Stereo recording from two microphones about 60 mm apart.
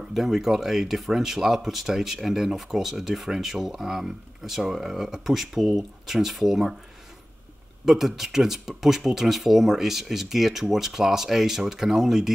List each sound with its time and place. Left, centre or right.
0.1 s speech: centre
7.8 s speech: centre